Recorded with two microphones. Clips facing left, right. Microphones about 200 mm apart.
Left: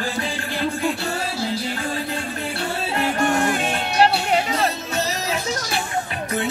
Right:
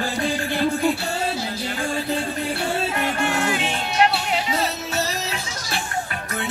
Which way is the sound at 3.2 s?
50° left (ahead or behind).